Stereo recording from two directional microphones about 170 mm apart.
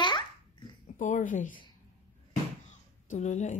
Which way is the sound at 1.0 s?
45° left (ahead or behind).